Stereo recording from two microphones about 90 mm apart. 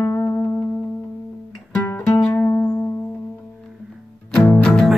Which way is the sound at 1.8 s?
30° left (ahead or behind).